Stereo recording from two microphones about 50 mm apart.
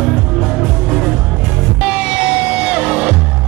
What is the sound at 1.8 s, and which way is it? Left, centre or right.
Music, right.